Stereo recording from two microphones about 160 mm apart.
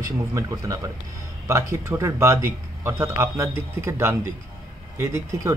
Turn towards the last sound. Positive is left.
turn(degrees=-20)  # may be behind; listen again after turning